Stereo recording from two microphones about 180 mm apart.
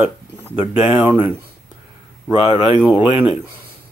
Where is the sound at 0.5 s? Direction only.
10° right (ahead or behind).